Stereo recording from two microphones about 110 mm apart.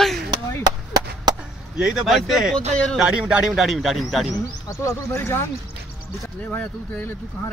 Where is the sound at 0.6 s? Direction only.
40° right (ahead or behind).